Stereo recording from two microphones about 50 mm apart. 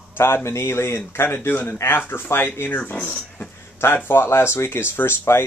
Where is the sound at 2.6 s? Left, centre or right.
Left.